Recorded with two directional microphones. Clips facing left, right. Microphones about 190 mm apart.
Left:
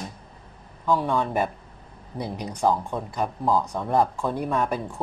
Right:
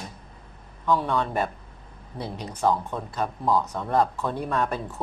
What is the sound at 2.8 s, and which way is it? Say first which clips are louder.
Speech: left 1 dB; 10° left (ahead or behind).